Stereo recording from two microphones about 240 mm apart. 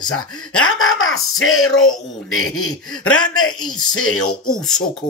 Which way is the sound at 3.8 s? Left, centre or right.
Left.